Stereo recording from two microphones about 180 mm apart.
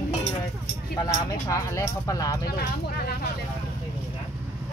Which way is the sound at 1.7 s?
15° left (ahead or behind).